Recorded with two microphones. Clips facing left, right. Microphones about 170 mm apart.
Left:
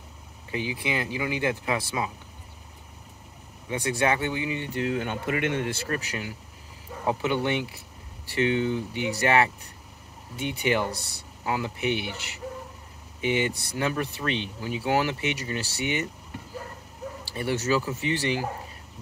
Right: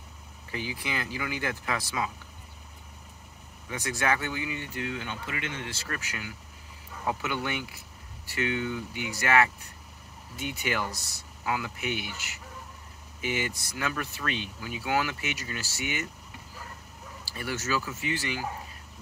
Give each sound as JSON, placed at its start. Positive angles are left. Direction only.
{"t": 0.5, "sound": "speech", "side_deg": 20}
{"t": 3.6, "sound": "speech", "side_deg": 30}
{"t": 4.6, "sound": "speech", "side_deg": 35}
{"t": 5.9, "sound": "speech", "side_deg": 30}
{"t": 17.3, "sound": "speech", "side_deg": 30}